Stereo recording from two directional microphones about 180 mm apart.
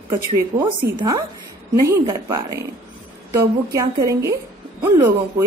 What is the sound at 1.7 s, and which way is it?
Speech, 15° right (ahead or behind).